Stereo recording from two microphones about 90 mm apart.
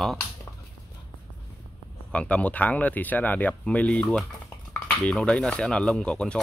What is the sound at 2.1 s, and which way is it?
Speech, 15° left (ahead or behind).